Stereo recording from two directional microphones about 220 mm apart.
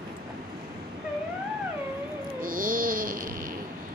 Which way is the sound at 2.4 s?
40° right (ahead or behind).